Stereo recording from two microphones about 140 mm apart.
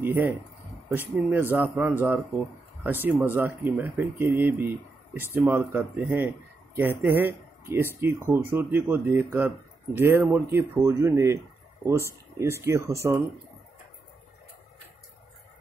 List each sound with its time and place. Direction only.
0.0 s speech: 15° right (ahead or behind)
1.3 s speech: 15° right (ahead or behind)